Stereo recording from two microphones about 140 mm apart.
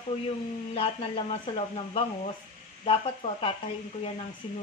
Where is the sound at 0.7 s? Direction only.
45° left (ahead or behind).